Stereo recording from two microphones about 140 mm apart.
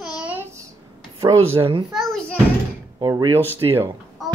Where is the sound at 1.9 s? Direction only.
Centre (ahead or behind).